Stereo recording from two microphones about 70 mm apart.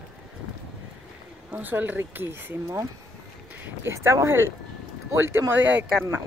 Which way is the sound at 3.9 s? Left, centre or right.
Right.